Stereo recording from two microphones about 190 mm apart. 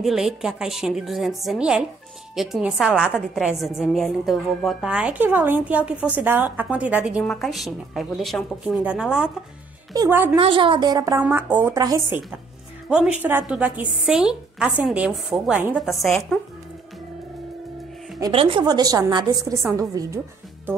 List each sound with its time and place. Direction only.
0.0 s a woman's voice: centre (ahead or behind)
10.3 s a woman's voice: 25° right (ahead or behind)
12.8 s a woman's voice: 5° right (ahead or behind)
18.2 s a woman's voice: 25° right (ahead or behind)